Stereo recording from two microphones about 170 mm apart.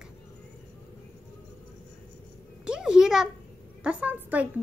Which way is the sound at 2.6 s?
5° right (ahead or behind).